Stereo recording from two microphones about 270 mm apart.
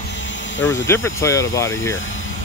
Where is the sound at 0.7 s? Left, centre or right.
Centre.